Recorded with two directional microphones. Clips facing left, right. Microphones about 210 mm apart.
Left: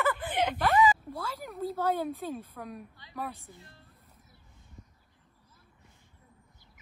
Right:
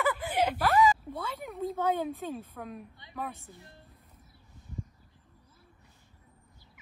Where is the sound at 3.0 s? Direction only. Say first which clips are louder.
Right 1 dB; 20° right (ahead or behind).